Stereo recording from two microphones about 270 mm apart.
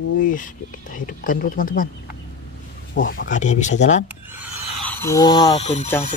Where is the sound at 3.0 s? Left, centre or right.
Left.